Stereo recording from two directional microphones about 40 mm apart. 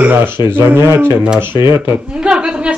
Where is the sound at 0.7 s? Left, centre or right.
Right.